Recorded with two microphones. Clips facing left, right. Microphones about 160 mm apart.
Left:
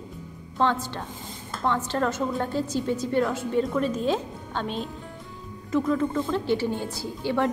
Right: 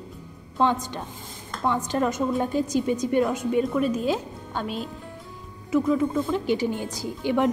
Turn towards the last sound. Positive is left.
turn(degrees=-15)  # may be behind; listen again after turning